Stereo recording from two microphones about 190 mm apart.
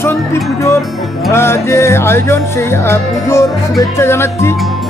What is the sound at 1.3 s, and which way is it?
Speech, 15° left (ahead or behind).